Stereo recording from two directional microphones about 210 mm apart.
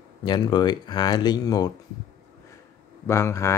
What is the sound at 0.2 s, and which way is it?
Speech, 20° left (ahead or behind).